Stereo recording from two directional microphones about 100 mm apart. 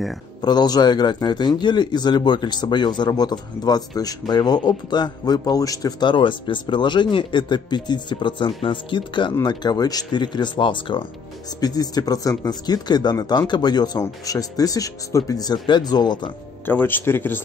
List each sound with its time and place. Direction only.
0.4 s a man's voice: 45° left (ahead or behind)
11.6 s a man's voice: 40° left (ahead or behind)
13.9 s speech: 35° left (ahead or behind)
16.6 s speech: 20° left (ahead or behind)